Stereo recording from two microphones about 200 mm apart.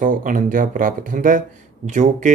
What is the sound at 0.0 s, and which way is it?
Speech, 40° right (ahead or behind).